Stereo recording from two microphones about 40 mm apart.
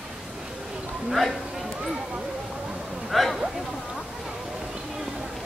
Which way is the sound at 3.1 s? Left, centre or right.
Centre.